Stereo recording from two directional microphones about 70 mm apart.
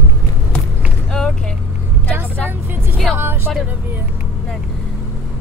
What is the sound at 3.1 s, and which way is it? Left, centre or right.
Vehicle, right.